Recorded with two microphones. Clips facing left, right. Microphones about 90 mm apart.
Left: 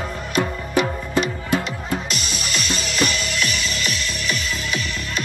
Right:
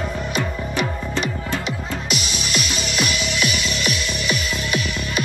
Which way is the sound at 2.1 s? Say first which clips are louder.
Right 2 dB; 5° right (ahead or behind).